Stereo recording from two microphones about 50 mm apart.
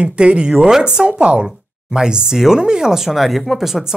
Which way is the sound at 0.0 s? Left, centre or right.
Right.